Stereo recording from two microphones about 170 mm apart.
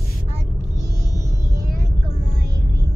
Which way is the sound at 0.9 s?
20° right (ahead or behind).